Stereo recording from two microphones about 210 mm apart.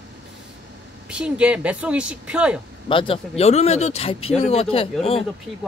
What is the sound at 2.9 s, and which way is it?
Speech, 25° left (ahead or behind).